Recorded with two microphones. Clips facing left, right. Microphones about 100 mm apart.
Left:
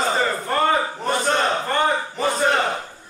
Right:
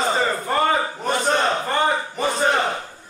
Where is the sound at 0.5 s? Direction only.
10° right (ahead or behind).